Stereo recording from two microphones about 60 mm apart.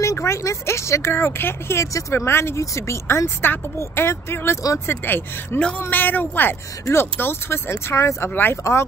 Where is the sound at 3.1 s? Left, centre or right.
Left.